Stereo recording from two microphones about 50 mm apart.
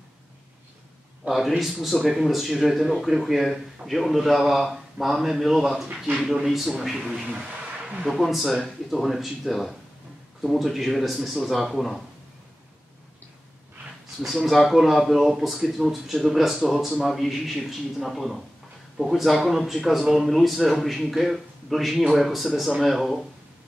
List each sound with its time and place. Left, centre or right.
1.2 s a man's voice: centre
7.1 s speech: centre
8.0 s a man's voice: centre
14.2 s a man's voice: centre